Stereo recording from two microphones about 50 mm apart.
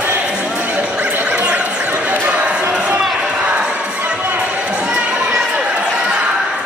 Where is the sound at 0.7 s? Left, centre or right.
Right.